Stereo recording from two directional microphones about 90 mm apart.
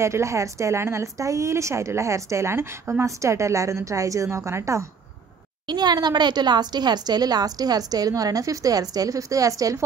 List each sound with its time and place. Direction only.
0.0 s speech: 35° right (ahead or behind)
5.7 s a woman's voice: 50° right (ahead or behind)